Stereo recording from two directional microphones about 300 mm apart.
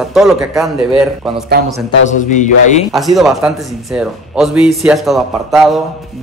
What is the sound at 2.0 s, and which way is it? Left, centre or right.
Speech, left.